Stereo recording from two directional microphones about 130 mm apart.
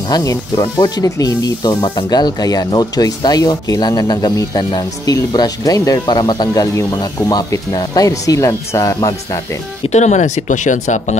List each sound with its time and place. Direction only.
0.1 s speech: 25° left (ahead or behind)
9.8 s speech: 60° left (ahead or behind)